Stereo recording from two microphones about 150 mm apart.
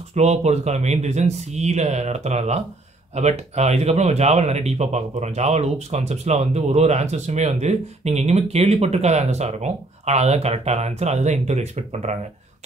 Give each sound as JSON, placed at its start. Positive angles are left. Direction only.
{"t": 0.1, "sound": "speech", "side_deg": -45}